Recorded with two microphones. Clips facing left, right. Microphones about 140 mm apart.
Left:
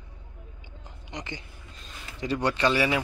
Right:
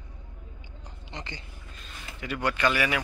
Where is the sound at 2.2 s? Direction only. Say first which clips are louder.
Left 3 dB; 30° left (ahead or behind).